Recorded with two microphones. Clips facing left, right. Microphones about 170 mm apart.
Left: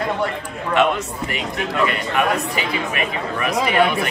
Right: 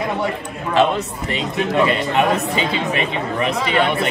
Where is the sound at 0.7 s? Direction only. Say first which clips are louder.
Right 2 dB; 35° right (ahead or behind).